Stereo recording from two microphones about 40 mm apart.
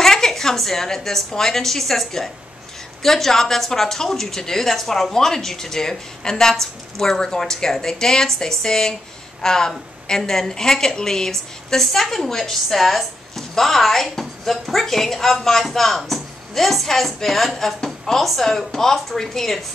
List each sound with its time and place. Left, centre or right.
0.0 s a woman's voice: centre